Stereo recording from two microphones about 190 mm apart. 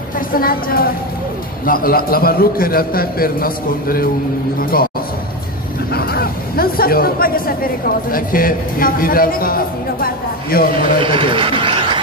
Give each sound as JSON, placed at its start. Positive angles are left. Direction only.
{"t": 0.3, "sound": "speech", "side_deg": 50}
{"t": 5.9, "sound": "speech", "side_deg": 50}
{"t": 10.7, "sound": "a man's voice", "side_deg": -25}